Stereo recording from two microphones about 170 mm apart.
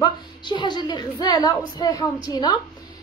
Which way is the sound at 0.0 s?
25° left (ahead or behind).